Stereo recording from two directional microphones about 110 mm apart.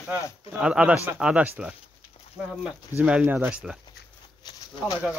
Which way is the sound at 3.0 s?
15° right (ahead or behind).